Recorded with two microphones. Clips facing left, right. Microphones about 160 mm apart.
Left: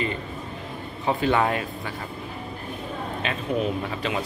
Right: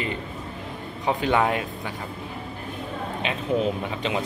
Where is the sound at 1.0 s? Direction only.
15° right (ahead or behind).